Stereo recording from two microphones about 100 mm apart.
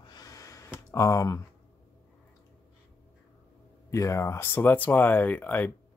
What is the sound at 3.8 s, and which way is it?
Speech, 30° left (ahead or behind).